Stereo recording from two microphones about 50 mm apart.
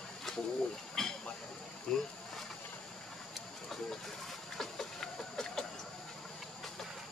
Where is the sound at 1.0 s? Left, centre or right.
Centre.